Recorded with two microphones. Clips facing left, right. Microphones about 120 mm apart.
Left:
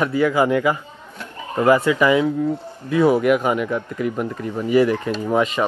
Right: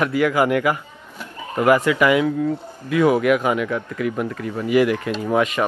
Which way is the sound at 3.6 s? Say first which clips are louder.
Left 1 dB; 15° left (ahead or behind).